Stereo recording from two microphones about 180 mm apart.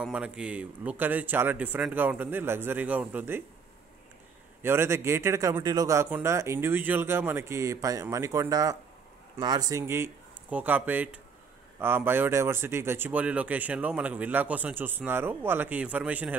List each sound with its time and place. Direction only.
0.0 s speech: 5° right (ahead or behind)
4.6 s speech: 15° right (ahead or behind)